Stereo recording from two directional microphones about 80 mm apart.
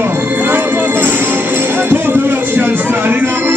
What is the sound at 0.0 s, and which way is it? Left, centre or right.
Music, right.